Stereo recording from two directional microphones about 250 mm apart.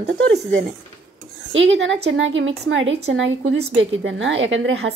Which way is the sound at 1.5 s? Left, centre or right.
Right.